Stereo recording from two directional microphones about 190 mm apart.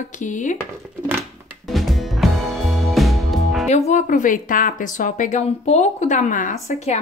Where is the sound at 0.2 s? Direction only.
40° left (ahead or behind).